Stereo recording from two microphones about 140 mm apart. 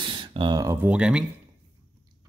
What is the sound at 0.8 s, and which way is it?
Speech, 5° right (ahead or behind).